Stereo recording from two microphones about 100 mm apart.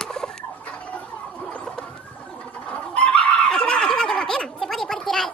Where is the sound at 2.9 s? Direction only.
10° left (ahead or behind).